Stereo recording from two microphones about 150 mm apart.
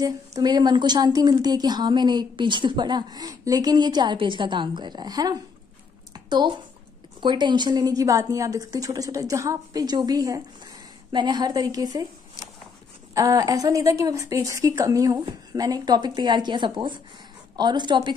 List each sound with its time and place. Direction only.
0.0 s speech: 25° right (ahead or behind)
6.1 s a sound: 30° right (ahead or behind)
7.2 s speech: 30° right (ahead or behind)
13.1 s a woman's voice: 25° right (ahead or behind)